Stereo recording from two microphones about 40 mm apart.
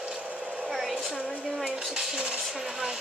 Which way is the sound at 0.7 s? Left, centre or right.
Centre.